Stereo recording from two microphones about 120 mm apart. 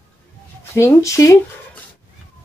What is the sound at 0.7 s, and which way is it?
Speech, 20° left (ahead or behind).